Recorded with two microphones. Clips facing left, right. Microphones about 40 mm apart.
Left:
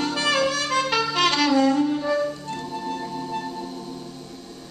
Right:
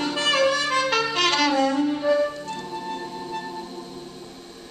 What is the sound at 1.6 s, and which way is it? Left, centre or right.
Music, centre.